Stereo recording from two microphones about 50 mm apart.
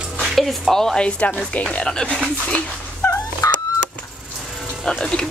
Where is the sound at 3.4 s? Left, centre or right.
Left.